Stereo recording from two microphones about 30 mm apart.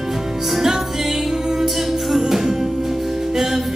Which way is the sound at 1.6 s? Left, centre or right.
Centre.